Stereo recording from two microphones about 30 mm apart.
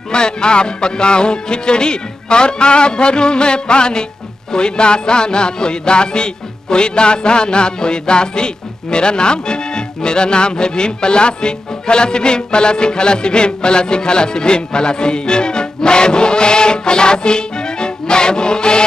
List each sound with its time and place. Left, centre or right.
0.1 s speech: left